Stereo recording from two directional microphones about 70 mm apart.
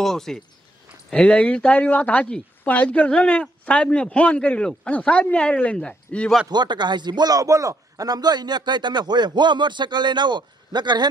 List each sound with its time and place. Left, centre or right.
0.0 s speech: centre
6.5 s a man's voice: right